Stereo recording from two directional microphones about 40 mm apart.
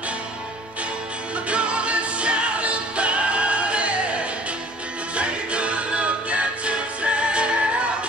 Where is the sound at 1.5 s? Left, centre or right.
Right.